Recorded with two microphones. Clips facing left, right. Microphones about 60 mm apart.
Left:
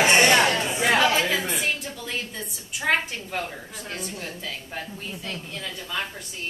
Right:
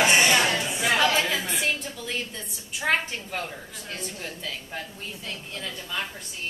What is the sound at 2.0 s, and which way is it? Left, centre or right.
A woman's voice, centre.